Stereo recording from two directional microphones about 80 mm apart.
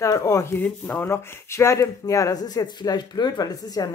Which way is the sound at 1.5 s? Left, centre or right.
Left.